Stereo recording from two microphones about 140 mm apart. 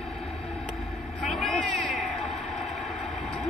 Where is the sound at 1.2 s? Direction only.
Centre (ahead or behind).